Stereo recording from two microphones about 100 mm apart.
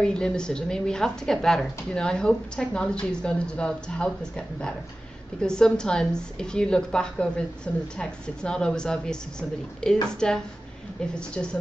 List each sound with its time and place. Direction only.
0.0 s speech: 10° left (ahead or behind)